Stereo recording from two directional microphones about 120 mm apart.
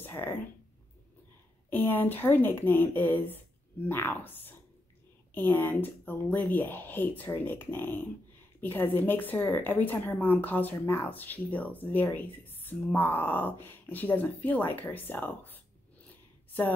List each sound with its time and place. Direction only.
0.0 s speech: 15° left (ahead or behind)
1.7 s a woman's voice: 15° left (ahead or behind)